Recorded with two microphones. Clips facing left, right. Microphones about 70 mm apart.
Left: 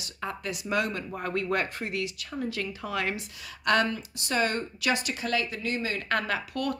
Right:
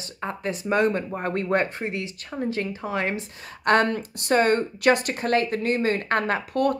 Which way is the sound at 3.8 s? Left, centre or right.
Right.